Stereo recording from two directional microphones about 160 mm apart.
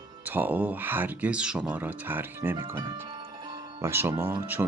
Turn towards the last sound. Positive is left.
turn(degrees=-15)  # may be behind; listen again after turning